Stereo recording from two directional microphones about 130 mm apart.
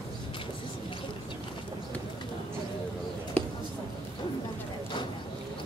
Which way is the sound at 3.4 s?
10° left (ahead or behind).